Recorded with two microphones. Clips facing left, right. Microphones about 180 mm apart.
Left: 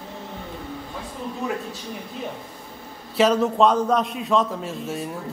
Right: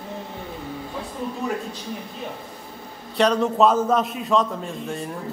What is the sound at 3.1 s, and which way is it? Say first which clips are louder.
A man's voice: left 1 dB; 5° left (ahead or behind).